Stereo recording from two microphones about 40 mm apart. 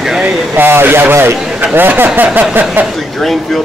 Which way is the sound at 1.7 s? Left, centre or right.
Right.